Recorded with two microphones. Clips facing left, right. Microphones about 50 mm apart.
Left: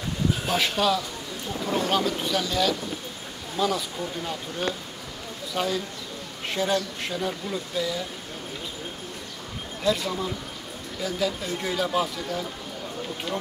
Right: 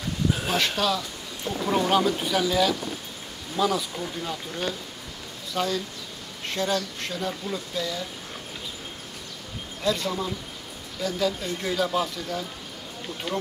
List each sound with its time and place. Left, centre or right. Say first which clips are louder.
0.6 s speech: left 3 dB; centre
1.7 s speech: right 3 dB; centre
9.8 s speech: left 1 dB; centre